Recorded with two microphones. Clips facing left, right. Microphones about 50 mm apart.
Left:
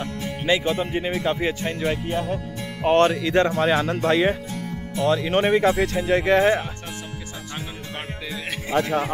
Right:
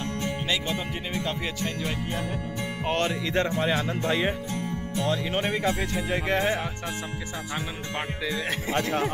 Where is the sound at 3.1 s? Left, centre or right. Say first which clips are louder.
Left 6 dB; left.